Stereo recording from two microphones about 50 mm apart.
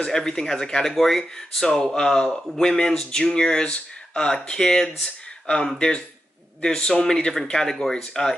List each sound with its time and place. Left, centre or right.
0.0 s speech: centre